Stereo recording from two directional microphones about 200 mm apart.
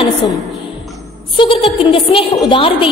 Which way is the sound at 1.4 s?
25° left (ahead or behind).